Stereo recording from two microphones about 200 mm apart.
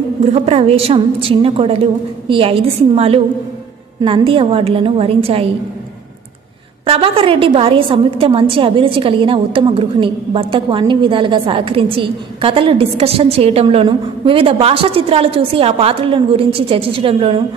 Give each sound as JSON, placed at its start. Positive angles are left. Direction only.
{"t": 0.2, "sound": "a woman's voice", "side_deg": -30}
{"t": 6.9, "sound": "a woman's voice", "side_deg": -30}